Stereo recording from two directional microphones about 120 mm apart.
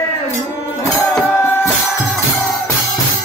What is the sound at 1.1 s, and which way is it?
Music, 20° left (ahead or behind).